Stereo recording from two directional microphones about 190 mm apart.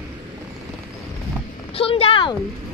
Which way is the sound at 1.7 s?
30° left (ahead or behind).